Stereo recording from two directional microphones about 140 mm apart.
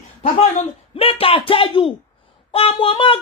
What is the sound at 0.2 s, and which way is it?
Speech, 45° left (ahead or behind).